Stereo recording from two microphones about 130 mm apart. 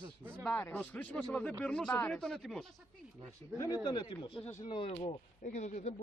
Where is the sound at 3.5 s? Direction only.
25° left (ahead or behind); by 4.9 s 40° left (ahead or behind).